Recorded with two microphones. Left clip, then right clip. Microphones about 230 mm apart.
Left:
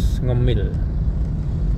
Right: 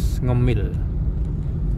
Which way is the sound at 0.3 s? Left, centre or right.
Right.